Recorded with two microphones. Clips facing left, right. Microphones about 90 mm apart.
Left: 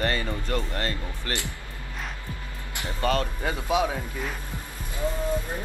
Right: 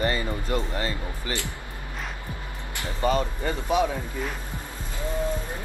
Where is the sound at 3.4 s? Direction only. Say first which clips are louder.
Right 1 dB; 15° left (ahead or behind).